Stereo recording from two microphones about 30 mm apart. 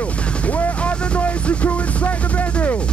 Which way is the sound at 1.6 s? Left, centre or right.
Left.